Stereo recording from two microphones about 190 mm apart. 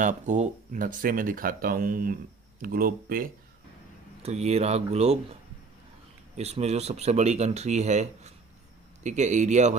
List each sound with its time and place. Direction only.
0.0 s speech: 40° right (ahead or behind)
4.2 s speech: 35° right (ahead or behind)
6.3 s speech: 35° right (ahead or behind)